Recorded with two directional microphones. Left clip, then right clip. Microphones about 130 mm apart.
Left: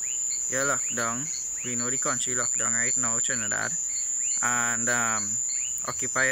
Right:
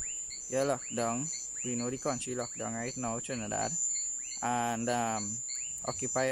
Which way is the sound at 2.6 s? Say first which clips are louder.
Left 9 dB; 15° right (ahead or behind).